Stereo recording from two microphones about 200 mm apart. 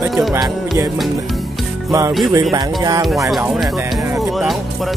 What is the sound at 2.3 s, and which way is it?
Speech, 15° right (ahead or behind).